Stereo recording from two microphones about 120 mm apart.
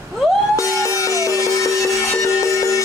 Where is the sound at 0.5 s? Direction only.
25° left (ahead or behind).